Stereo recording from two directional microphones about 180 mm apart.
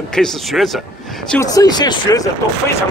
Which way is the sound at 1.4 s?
20° left (ahead or behind).